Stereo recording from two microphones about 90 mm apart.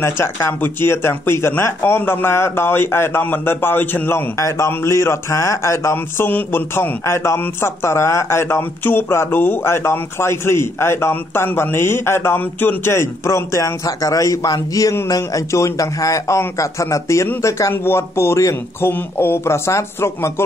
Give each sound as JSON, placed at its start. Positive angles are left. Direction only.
{"t": 0.0, "sound": "a man's voice", "side_deg": 30}